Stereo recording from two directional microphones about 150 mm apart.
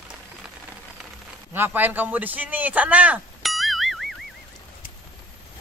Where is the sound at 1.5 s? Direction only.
15° right (ahead or behind).